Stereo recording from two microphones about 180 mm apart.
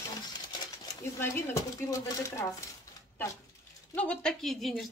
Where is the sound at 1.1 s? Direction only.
15° left (ahead or behind).